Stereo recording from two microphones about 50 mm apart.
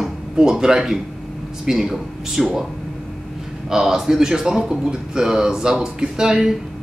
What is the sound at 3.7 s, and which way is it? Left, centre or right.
A man's voice, centre.